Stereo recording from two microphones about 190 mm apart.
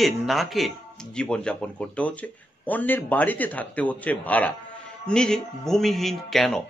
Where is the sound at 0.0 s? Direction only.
Centre (ahead or behind).